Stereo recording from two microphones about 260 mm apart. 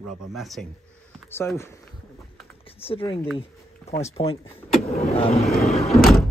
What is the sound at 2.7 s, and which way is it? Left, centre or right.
Speech, left.